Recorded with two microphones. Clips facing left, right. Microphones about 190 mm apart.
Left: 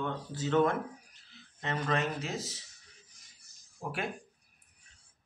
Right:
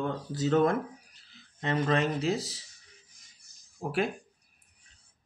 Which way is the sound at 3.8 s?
35° right (ahead or behind).